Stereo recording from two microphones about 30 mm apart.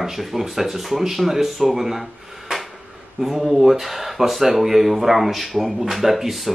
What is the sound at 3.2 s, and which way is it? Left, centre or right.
Speech, centre.